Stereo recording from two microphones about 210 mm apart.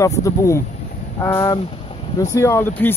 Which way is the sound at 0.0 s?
15° left (ahead or behind).